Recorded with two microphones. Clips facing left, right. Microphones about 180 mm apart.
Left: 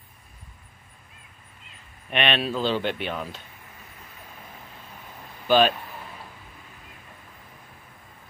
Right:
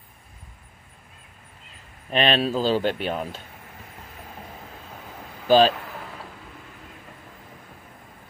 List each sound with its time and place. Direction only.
2.0 s speech: 35° right (ahead or behind)
5.5 s speech: 35° right (ahead or behind)